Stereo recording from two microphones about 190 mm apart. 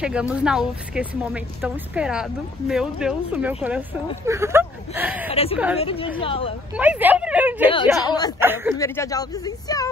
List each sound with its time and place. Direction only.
0.0 s a woman's voice: 5° right (ahead or behind)
5.3 s a woman's voice: 30° left (ahead or behind)
6.8 s speech: 10° right (ahead or behind)
8.1 s speech: 20° left (ahead or behind)
8.4 s speech: 10° right (ahead or behind)
8.7 s speech: 15° left (ahead or behind)